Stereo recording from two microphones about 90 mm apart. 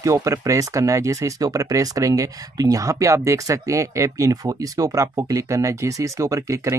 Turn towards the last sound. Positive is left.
turn(degrees=-35)  # may be behind; listen again after turning